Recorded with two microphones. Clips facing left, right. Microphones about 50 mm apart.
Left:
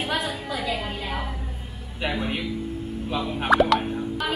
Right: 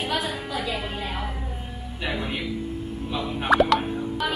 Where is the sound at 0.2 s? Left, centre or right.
Right.